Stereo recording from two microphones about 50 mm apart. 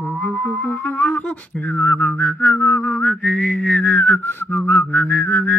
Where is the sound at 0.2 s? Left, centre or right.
Left.